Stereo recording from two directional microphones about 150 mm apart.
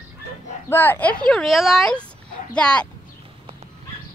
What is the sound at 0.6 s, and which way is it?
A woman's voice, 15° left (ahead or behind).